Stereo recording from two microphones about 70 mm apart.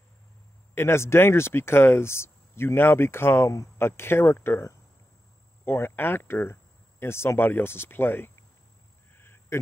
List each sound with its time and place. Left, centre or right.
0.7 s speech: left
5.7 s speech: left
9.1 s a sound: left